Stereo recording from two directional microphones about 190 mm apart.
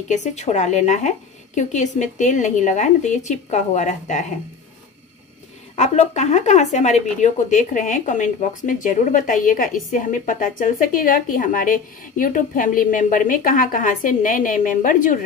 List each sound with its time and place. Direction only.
0.1 s a woman's voice: 35° left (ahead or behind)
5.8 s speech: 35° left (ahead or behind)